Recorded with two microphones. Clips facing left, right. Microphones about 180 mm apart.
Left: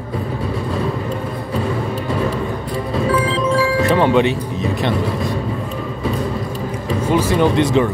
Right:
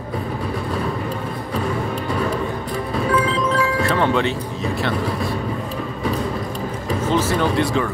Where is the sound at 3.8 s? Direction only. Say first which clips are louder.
Left 7 dB; 20° left (ahead or behind).